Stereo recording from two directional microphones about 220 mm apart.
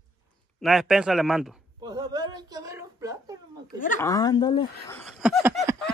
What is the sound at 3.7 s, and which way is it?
Speech, 35° left (ahead or behind).